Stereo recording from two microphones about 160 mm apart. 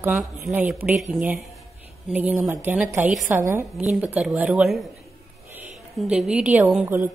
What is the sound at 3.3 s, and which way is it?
Speech, 15° right (ahead or behind).